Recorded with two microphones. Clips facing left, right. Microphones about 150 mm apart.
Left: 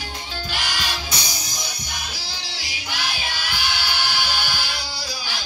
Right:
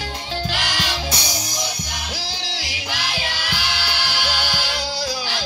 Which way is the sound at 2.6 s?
90° right.